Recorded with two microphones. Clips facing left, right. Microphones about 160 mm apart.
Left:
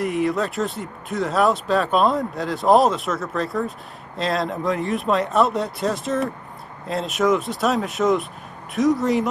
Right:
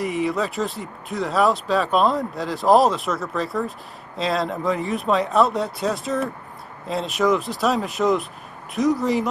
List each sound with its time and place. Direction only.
0.0 s speech: centre (ahead or behind)